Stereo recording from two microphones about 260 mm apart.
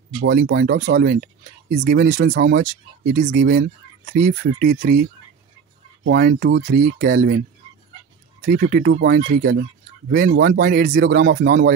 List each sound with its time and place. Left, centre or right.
0.2 s speech: right
2.6 s speech: right
6.0 s speech: right
8.5 s speech: right